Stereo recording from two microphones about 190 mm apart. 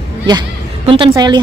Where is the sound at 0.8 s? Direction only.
30° right (ahead or behind).